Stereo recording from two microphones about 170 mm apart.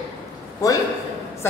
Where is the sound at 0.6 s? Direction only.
20° left (ahead or behind).